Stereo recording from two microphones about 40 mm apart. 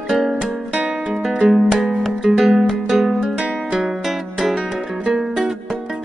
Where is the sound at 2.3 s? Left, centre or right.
Centre.